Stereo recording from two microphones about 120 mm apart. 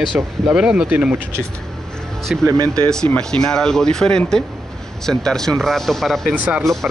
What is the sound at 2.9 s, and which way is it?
Speech, 5° left (ahead or behind).